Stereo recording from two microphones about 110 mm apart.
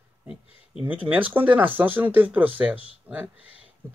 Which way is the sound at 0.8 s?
15° right (ahead or behind).